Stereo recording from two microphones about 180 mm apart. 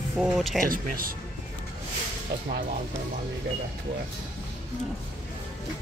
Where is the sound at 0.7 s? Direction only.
50° right (ahead or behind).